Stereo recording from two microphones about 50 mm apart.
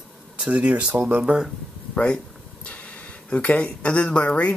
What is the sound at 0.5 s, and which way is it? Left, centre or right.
Speech, right.